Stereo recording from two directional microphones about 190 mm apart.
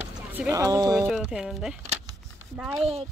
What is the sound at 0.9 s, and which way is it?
Speech, centre (ahead or behind).